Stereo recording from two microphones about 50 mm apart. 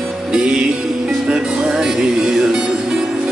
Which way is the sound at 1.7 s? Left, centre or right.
Centre.